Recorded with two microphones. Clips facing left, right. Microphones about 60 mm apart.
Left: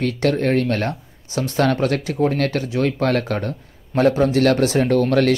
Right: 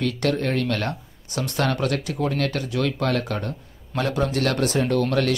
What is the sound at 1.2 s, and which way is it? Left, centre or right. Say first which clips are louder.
Speech: left 5 dB; left.